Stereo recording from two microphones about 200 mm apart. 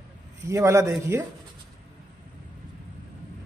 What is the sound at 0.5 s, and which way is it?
Speech, 15° right (ahead or behind).